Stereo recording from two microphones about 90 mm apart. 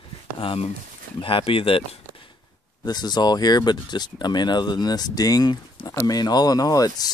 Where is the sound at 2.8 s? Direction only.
50° left (ahead or behind).